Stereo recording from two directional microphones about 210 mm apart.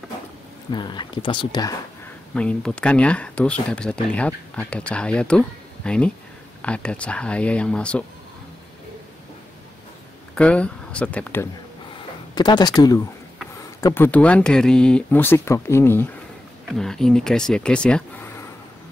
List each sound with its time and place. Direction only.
0.7 s speech: 20° left (ahead or behind)
2.3 s speech: 5° left (ahead or behind)
10.3 s speech: 5° left (ahead or behind)
12.4 s speech: 20° left (ahead or behind)